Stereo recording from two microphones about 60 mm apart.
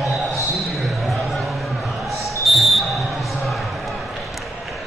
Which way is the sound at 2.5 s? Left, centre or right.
Centre.